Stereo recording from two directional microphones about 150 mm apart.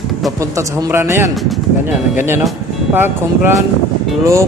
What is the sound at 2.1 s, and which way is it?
A man's voice, 15° right (ahead or behind).